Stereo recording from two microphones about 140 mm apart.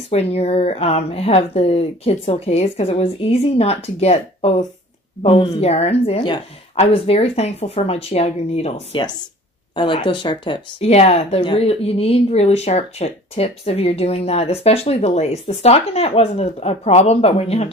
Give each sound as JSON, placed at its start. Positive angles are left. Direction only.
{"t": 0.1, "sound": "speech", "side_deg": 45}
{"t": 9.8, "sound": "speech", "side_deg": 35}
{"t": 10.9, "sound": "speech", "side_deg": 50}